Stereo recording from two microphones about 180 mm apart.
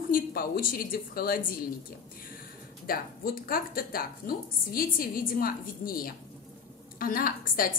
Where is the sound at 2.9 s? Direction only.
55° left (ahead or behind).